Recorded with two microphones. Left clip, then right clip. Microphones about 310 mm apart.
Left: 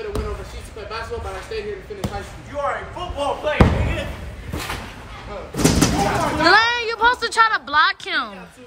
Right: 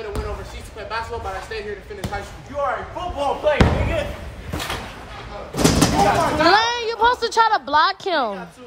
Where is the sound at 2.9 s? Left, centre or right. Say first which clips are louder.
Right 1 dB; right.